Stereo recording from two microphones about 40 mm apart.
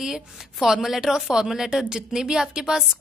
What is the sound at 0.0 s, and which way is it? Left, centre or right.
A woman's voice, centre.